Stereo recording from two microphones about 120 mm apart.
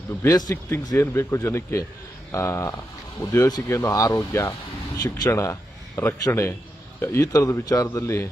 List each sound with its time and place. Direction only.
0.3 s a man's voice: 30° left (ahead or behind)